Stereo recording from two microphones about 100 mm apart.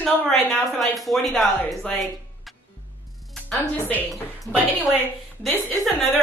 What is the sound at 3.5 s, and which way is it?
Speech, 20° left (ahead or behind).